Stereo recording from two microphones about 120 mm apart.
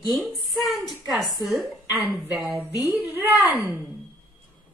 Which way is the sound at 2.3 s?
15° right (ahead or behind).